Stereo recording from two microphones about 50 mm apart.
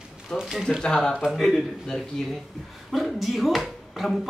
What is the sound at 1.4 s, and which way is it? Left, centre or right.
Speech, centre.